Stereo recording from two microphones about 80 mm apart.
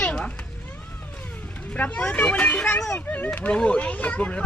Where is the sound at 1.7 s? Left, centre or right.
Centre.